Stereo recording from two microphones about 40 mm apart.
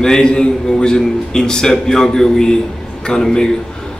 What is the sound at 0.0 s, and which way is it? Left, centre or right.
A man's voice, centre.